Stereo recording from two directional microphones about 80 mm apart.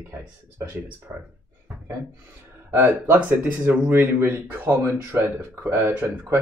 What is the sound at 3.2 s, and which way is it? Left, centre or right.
Speech, centre.